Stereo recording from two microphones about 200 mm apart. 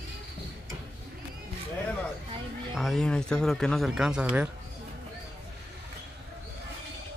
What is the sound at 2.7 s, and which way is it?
Speech, centre (ahead or behind).